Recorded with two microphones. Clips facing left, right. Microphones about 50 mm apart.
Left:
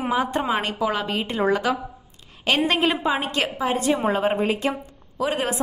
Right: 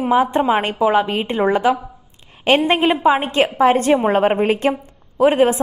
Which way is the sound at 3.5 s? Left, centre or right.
Right.